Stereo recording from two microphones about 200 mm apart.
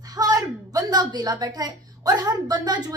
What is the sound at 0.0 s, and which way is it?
A woman's voice, 20° right (ahead or behind).